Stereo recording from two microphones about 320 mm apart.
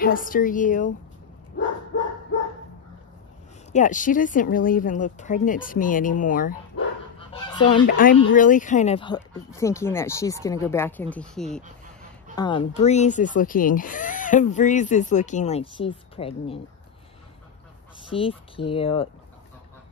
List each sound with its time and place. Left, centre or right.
0.0 s speech: left
3.7 s speech: left
7.8 s speech: left; by 11.6 s centre
12.4 s speech: centre
18.1 s speech: centre